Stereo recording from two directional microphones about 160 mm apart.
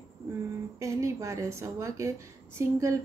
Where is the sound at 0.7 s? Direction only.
20° right (ahead or behind).